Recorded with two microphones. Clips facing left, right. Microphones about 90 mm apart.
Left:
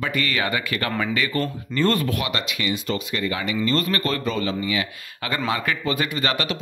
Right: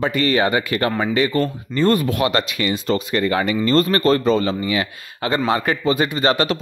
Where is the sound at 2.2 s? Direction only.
40° right (ahead or behind).